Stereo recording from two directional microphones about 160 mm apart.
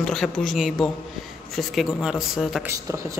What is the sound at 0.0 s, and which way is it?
Speech, 5° left (ahead or behind).